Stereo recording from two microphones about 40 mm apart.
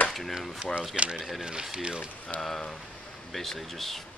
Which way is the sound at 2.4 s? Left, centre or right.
Centre.